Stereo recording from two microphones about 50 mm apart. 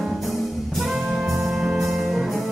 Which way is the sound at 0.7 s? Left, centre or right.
Centre.